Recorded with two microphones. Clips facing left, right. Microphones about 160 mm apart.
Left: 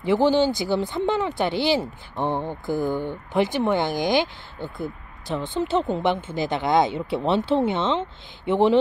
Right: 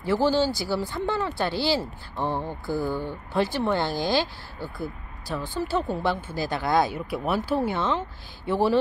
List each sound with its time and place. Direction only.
0.0 s speech: 20° left (ahead or behind)